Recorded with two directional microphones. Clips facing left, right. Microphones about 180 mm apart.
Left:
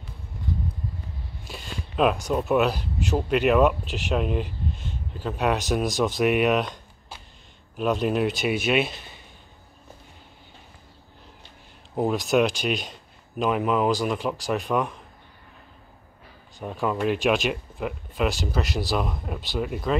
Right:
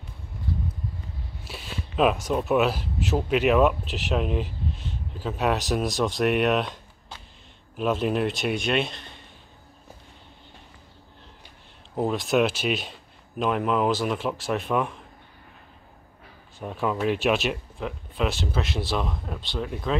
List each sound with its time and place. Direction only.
0.5 s clip-clop: 20° left (ahead or behind)
1.4 s speech: 5° right (ahead or behind)
11.9 s speech: 5° left (ahead or behind)
16.5 s speech: centre (ahead or behind)